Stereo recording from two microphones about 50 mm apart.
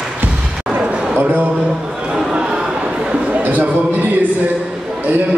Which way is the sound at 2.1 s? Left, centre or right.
Centre.